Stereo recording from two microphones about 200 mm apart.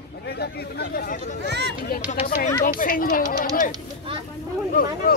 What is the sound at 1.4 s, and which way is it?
Speech, 60° right (ahead or behind).